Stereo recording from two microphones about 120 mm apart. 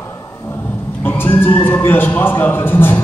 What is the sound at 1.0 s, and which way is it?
Speech, 15° left (ahead or behind).